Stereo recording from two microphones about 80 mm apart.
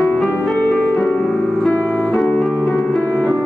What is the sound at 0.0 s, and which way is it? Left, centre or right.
Music, centre.